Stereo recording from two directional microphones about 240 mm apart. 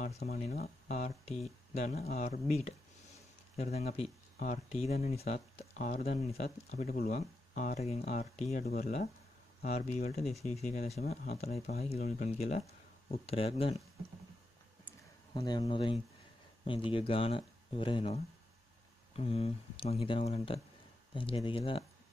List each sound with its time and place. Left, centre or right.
0.2 s speech: left
3.5 s speech: left
15.3 s speech: centre